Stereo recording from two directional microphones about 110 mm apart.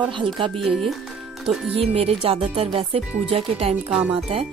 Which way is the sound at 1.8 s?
65° right (ahead or behind).